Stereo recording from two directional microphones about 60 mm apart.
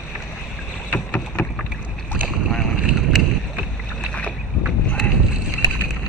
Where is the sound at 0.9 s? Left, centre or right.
Left.